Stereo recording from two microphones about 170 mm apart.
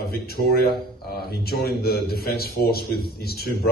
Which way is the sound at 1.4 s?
65° left (ahead or behind).